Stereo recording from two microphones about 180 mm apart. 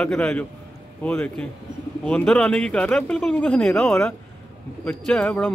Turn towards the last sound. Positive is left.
turn(degrees=5)  # may be behind; listen again after turning